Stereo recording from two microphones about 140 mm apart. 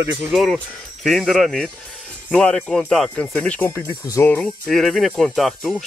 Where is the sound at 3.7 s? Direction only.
25° left (ahead or behind).